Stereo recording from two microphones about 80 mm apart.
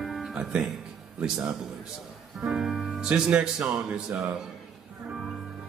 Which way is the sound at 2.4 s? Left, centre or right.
Centre.